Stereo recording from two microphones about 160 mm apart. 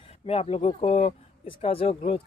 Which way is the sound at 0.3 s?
40° left (ahead or behind).